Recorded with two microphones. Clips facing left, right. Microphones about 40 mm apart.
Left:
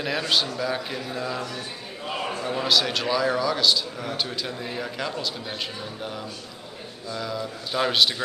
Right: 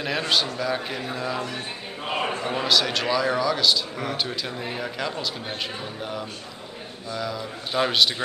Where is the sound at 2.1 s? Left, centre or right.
Right.